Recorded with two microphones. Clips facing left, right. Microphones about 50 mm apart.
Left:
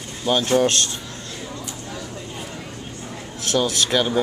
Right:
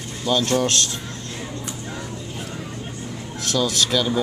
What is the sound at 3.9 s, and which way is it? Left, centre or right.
Speech, left.